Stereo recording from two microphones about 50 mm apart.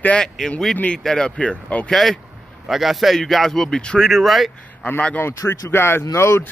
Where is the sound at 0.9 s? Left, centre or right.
Centre.